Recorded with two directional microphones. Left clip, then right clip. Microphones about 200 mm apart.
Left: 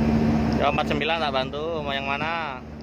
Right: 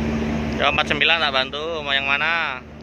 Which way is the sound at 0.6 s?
5° left (ahead or behind).